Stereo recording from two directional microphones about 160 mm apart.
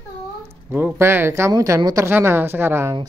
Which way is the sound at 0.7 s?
15° right (ahead or behind).